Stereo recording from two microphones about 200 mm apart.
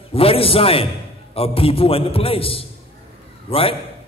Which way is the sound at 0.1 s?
30° left (ahead or behind).